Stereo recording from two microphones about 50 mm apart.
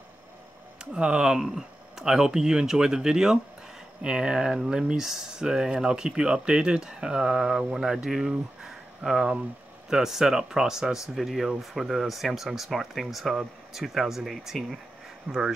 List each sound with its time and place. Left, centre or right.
0.9 s speech: centre
11.1 s speech: centre
15.3 s speech: centre